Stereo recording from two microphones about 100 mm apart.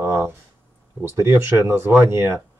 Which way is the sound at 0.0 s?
30° right (ahead or behind).